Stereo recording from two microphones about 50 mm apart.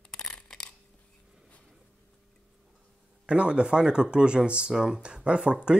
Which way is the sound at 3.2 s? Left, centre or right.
Right.